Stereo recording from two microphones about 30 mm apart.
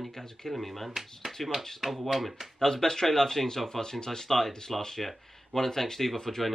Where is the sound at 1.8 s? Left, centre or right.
Centre.